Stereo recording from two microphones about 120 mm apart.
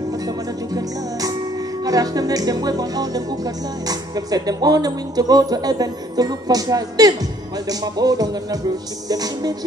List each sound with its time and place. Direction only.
1.9 s speech: 30° right (ahead or behind)